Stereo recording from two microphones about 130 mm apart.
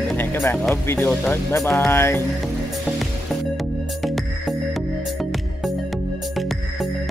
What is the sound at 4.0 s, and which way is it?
Music, centre (ahead or behind).